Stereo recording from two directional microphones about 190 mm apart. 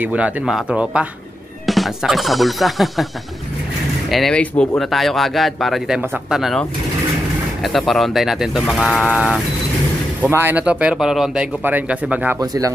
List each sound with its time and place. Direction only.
0.0 s speech: 5° right (ahead or behind)
4.1 s speech: centre (ahead or behind); by 12.7 s 15° right (ahead or behind)